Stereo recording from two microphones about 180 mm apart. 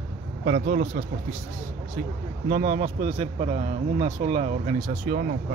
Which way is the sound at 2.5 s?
45° right (ahead or behind).